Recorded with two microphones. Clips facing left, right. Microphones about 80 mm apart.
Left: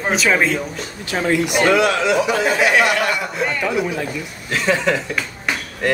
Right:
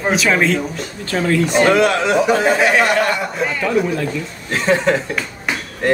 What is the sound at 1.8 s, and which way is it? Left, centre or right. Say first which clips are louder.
Speech: right 2 dB; right.